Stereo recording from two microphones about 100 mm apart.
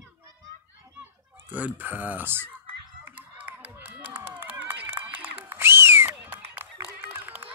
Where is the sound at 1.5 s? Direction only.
15° right (ahead or behind).